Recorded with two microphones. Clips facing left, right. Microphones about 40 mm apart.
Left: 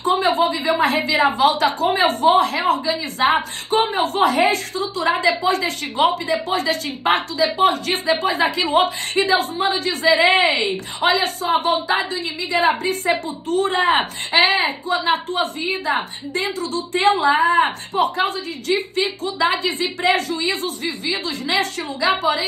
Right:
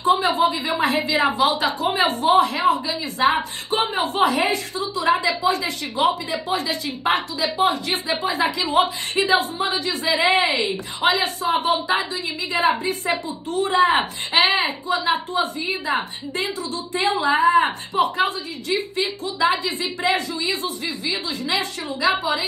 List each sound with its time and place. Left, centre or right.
0.1 s a woman's voice: left